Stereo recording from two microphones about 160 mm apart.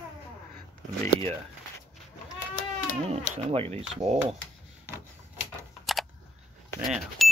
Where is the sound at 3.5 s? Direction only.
35° right (ahead or behind).